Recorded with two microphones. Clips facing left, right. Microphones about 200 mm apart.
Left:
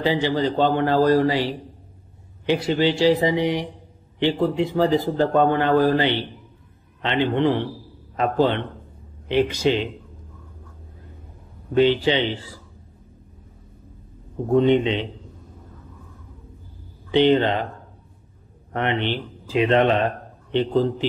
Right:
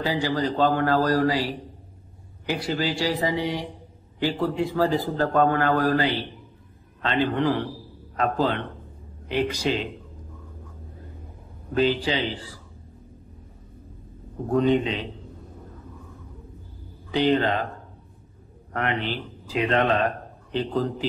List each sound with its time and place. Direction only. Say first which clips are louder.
0.0 s a man's voice: left 4 dB; 20° left (ahead or behind)
11.7 s a man's voice: left 5 dB; 25° left (ahead or behind)
14.5 s a man's voice: left 4 dB; 20° left (ahead or behind)
17.1 s a man's voice: left 4 dB; 25° left (ahead or behind)
18.7 s a man's voice: left 4 dB; 25° left (ahead or behind)